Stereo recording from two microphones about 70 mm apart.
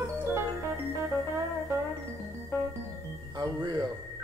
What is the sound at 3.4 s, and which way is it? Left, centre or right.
Music, right.